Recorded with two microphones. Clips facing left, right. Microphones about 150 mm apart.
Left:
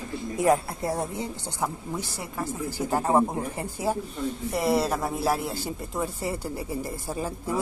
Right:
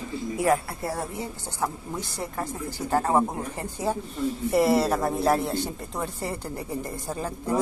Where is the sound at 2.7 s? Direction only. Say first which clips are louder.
Even; 10° left (ahead or behind).